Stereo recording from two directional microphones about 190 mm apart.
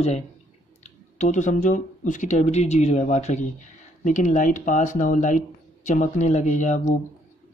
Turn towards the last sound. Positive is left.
turn(degrees=40)  # may be behind; listen again after turning